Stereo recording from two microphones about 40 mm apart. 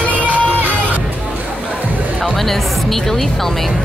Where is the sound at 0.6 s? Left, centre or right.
Right.